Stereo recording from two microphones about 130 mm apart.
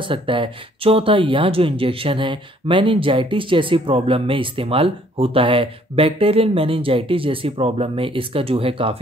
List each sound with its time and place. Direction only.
0.0 s speech: 40° right (ahead or behind)